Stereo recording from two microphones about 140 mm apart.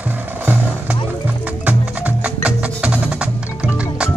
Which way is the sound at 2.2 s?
10° right (ahead or behind).